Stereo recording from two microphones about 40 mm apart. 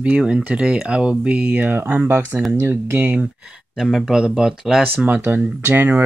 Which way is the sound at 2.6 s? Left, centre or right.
Right.